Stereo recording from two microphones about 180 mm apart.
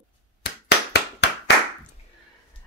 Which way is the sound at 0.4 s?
70° left (ahead or behind).